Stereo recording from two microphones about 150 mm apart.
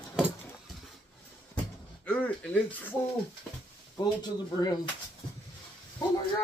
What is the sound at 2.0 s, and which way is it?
Speech, 10° left (ahead or behind).